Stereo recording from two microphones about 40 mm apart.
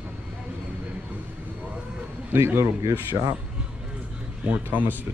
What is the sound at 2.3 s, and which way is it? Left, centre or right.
Speech, right.